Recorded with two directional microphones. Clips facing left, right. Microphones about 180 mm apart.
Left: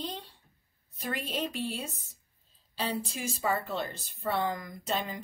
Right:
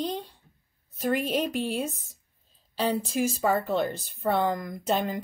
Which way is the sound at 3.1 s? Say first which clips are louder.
Right 7 dB; 50° right (ahead or behind).